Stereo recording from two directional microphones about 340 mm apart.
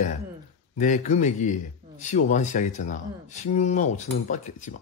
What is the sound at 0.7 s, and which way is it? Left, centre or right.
Speech, left.